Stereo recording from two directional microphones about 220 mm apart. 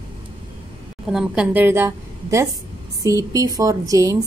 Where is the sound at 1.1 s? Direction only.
5° right (ahead or behind).